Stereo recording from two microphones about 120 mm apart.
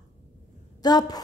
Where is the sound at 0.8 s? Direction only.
35° left (ahead or behind).